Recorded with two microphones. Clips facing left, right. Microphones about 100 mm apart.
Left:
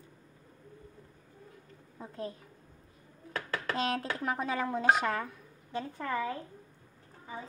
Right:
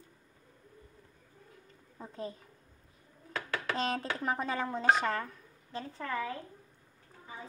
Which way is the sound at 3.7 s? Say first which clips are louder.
Left 2 dB; centre (ahead or behind).